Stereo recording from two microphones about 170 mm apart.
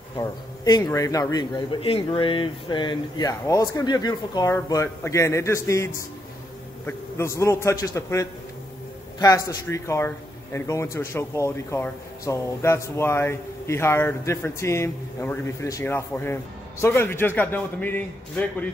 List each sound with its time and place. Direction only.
0.2 s a man's voice: 25° left (ahead or behind)